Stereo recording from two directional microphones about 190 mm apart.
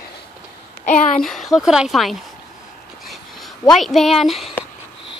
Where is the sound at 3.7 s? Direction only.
Centre (ahead or behind).